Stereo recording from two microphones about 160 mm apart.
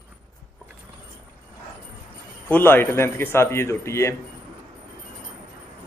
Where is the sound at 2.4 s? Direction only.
15° left (ahead or behind).